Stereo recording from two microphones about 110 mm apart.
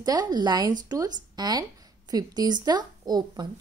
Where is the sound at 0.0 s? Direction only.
40° right (ahead or behind).